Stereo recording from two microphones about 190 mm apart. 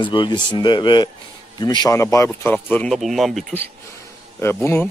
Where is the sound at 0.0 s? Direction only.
25° left (ahead or behind); by 3.5 s centre (ahead or behind).